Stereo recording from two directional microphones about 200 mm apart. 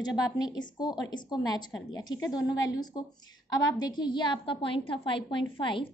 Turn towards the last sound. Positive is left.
turn(degrees=25)  # may be behind; listen again after turning